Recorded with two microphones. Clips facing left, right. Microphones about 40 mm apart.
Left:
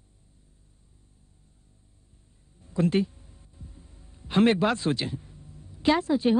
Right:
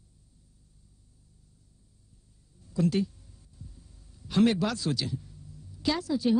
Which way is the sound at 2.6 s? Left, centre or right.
Left.